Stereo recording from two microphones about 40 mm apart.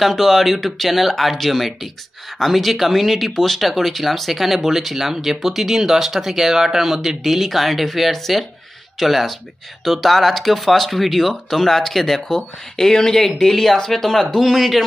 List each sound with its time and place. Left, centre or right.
0.0 s speech: centre
14.5 s speech: centre